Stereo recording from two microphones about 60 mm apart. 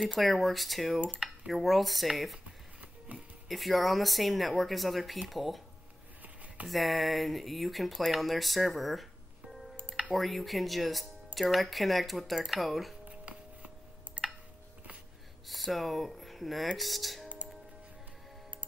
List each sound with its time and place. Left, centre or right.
0.1 s speech: centre
3.4 s speech: centre
6.2 s a sound: right
6.7 s speech: centre
10.1 s speech: centre
13.1 s a sound: right
15.4 s speech: centre